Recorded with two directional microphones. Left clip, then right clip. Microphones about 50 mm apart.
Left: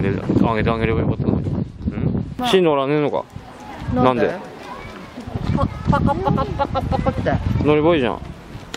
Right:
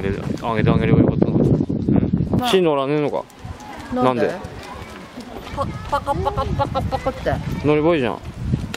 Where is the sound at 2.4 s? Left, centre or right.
Centre.